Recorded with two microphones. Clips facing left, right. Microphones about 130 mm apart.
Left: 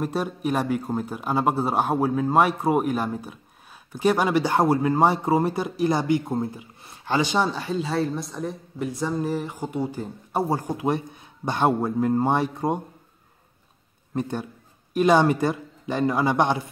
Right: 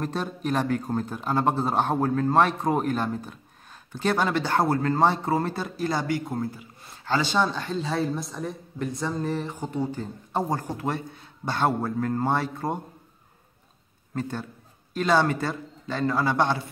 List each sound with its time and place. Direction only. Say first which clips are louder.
0.0 s a man's voice: left 3 dB; 10° left (ahead or behind)
14.1 s a man's voice: left 3 dB; 15° left (ahead or behind)